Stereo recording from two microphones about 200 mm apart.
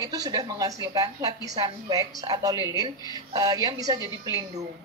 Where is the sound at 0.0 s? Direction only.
20° right (ahead or behind).